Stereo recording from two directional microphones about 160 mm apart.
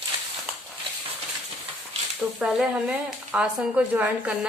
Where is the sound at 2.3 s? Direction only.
5° right (ahead or behind).